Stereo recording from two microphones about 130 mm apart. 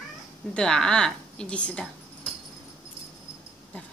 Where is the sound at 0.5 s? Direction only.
5° left (ahead or behind).